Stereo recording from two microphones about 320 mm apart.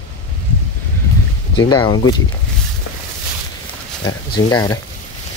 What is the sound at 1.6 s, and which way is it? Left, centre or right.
Speech, centre.